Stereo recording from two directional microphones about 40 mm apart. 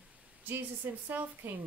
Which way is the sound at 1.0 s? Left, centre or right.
Right.